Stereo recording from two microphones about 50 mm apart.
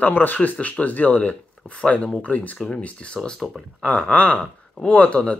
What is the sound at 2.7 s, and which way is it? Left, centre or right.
Speech, centre.